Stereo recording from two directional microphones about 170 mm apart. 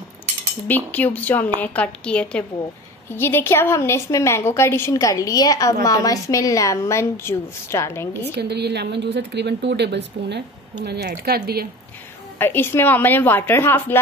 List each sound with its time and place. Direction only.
0.7 s a woman's voice: 10° left (ahead or behind)
8.4 s speech: 75° right (ahead or behind)
10.8 s speech: 75° right (ahead or behind)
12.4 s a woman's voice: 10° left (ahead or behind)